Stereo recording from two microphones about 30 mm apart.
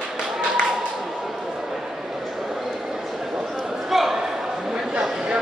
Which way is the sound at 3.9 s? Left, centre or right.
Centre.